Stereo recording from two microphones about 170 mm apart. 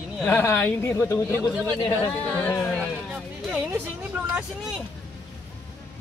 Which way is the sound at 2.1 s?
5° left (ahead or behind).